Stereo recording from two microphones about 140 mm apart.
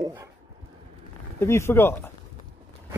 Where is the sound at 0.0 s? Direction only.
20° right (ahead or behind).